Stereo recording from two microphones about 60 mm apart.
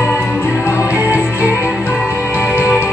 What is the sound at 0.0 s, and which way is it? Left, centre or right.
Music, left.